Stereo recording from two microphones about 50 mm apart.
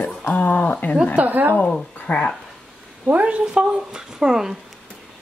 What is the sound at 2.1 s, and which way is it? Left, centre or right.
Speech, left.